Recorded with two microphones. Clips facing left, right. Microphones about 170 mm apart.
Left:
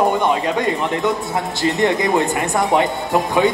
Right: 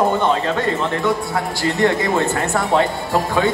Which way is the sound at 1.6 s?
20° left (ahead or behind).